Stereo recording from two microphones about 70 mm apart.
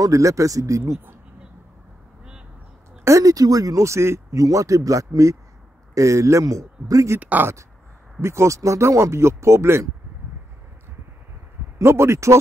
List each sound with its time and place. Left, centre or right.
0.0 s speech: right
3.0 s speech: right
7.2 s speech: right
8.2 s speech: right
11.8 s speech: right